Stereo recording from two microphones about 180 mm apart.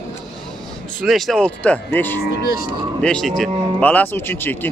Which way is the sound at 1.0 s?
Centre (ahead or behind).